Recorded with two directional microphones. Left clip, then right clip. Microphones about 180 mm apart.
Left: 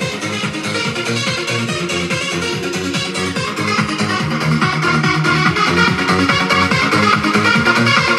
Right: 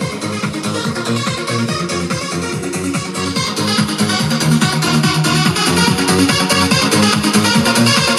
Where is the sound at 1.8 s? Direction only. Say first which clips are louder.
Left 2 dB; 50° right (ahead or behind).